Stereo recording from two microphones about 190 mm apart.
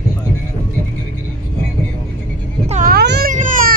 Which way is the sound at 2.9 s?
55° right (ahead or behind).